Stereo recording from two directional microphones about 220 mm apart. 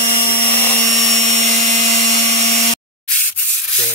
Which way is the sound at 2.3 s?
35° left (ahead or behind).